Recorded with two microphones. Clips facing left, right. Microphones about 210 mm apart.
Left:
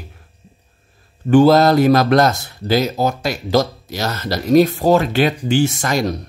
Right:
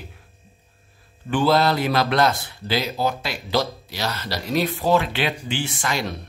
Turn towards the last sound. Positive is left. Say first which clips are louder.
# left 8 dB
turn(degrees=40)  # may be behind; listen again after turning